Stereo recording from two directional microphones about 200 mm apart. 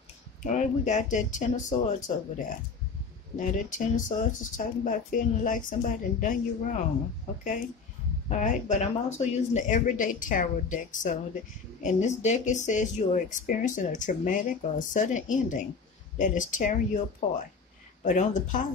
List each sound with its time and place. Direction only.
0.4 s speech: 35° left (ahead or behind)
3.7 s speech: 40° left (ahead or behind)
8.3 s speech: 35° left (ahead or behind)